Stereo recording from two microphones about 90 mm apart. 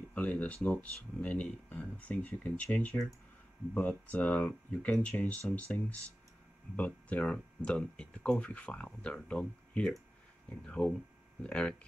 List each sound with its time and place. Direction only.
0.1 s speech: 15° left (ahead or behind)